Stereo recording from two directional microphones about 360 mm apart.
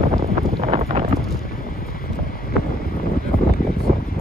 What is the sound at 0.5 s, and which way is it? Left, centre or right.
Wind noise, centre.